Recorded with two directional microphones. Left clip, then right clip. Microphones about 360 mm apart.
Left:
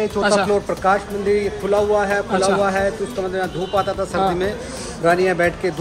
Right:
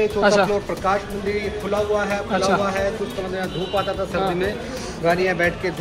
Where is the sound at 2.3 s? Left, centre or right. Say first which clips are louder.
Right 1 dB; centre.